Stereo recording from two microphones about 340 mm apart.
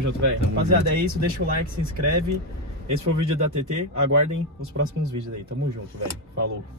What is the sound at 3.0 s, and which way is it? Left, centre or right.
Speech, right.